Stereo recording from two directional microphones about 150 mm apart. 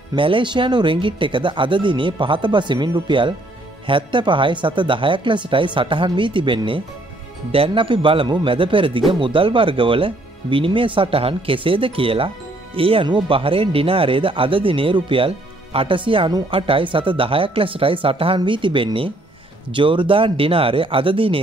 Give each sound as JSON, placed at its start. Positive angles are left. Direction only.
{"t": 0.1, "sound": "speech", "side_deg": -35}